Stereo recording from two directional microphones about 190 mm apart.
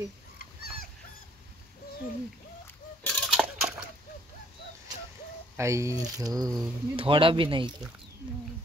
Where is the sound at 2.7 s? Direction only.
5° left (ahead or behind).